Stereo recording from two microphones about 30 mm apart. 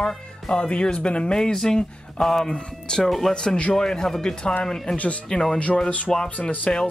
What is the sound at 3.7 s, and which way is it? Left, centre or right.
Speech, centre.